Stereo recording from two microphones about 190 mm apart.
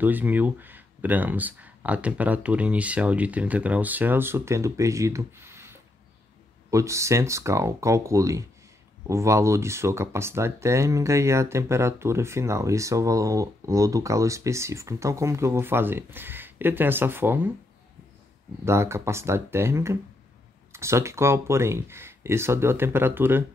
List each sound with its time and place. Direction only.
0.0 s speech: 10° right (ahead or behind)
18.7 s speech: 15° right (ahead or behind)